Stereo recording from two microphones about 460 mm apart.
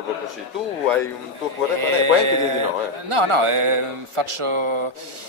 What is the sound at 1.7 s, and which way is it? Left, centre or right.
A man's voice, right.